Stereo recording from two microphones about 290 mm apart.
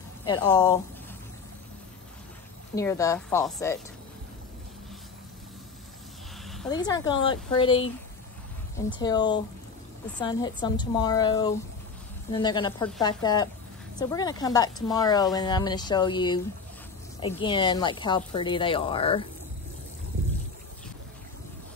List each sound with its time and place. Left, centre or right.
0.2 s speech: centre
2.7 s speech: centre
6.7 s speech: centre
9.0 s speech: centre
17.4 s speech: centre